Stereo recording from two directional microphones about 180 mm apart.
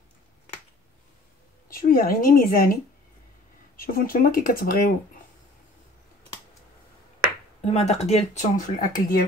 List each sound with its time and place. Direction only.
1.7 s speech: 50° left (ahead or behind)
7.6 s speech: 35° left (ahead or behind); by 9.2 s 50° left (ahead or behind)